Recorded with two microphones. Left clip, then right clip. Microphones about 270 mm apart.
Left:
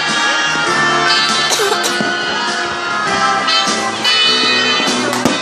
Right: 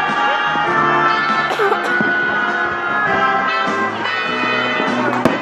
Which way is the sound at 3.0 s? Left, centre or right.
Left.